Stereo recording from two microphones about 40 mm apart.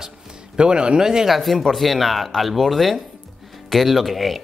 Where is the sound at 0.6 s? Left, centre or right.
Right.